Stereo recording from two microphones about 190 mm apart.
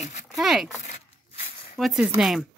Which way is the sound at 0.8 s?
35° left (ahead or behind).